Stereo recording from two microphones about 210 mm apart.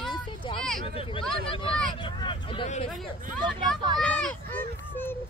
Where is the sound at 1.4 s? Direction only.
25° left (ahead or behind).